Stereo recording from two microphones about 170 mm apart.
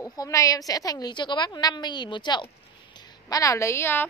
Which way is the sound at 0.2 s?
20° left (ahead or behind).